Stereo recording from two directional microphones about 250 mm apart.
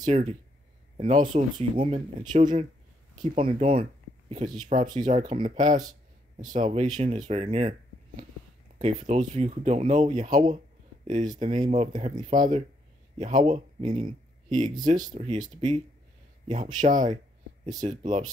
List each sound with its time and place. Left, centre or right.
0.0 s speech: right
8.7 s speech: right
12.3 s speech: right
16.4 s speech: right